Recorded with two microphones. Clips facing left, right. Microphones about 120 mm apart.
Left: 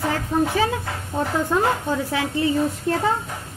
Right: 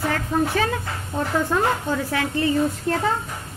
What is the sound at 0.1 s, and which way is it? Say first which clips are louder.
A woman's voice: left 1 dB; 15° left (ahead or behind).